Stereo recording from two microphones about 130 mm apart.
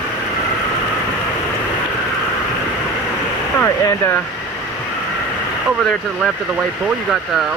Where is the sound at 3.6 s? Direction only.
20° left (ahead or behind).